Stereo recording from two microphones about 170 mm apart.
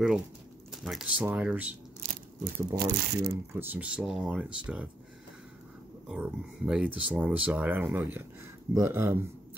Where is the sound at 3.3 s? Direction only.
10° right (ahead or behind).